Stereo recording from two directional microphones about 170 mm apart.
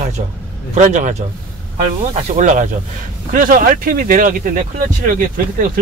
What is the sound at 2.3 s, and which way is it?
Speech, 45° right (ahead or behind).